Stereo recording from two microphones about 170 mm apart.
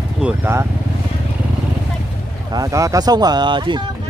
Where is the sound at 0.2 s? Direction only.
15° right (ahead or behind).